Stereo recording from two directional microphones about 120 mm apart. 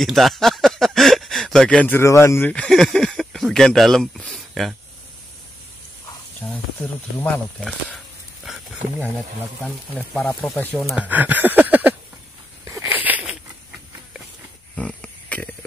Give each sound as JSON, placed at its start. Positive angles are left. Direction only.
{"t": 0.0, "sound": "speech", "side_deg": 0}
{"t": 2.5, "sound": "speech", "side_deg": 5}
{"t": 6.4, "sound": "snake", "side_deg": 25}
{"t": 9.7, "sound": "speech", "side_deg": 10}
{"t": 11.0, "sound": "a sound", "side_deg": -15}
{"t": 14.8, "sound": "a sound", "side_deg": 10}